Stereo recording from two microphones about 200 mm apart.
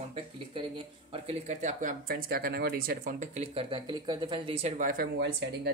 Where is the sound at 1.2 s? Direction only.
35° right (ahead or behind).